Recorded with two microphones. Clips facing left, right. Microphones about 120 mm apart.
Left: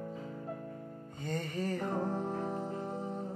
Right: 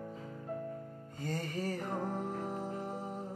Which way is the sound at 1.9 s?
30° left (ahead or behind).